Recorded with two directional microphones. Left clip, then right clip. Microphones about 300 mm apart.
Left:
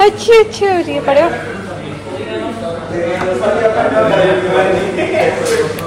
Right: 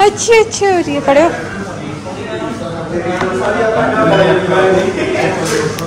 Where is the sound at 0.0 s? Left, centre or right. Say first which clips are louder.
Left 1 dB; centre.